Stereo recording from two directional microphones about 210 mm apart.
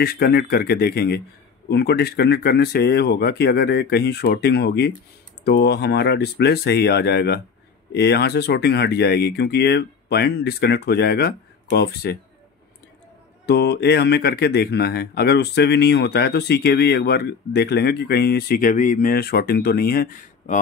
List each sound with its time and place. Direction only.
0.0 s speech: 45° left (ahead or behind)
13.5 s speech: 50° left (ahead or behind)